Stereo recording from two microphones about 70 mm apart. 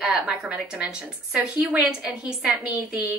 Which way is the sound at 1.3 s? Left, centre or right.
Centre.